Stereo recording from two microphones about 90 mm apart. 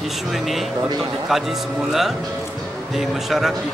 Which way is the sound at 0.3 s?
Centre (ahead or behind).